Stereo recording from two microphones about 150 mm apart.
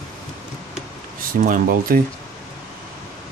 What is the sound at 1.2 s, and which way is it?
Speech, 65° right (ahead or behind).